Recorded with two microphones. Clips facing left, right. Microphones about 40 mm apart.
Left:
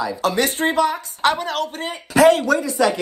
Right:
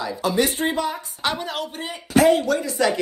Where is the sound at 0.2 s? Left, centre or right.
Left.